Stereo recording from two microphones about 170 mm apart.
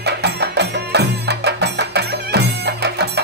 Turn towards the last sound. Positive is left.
turn(degrees=-75)  # may be behind; listen again after turning